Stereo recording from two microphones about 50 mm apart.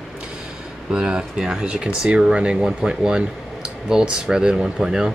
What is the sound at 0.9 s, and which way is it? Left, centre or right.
Speech, centre.